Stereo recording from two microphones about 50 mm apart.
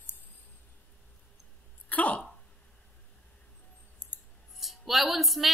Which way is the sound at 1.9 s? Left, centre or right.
Left.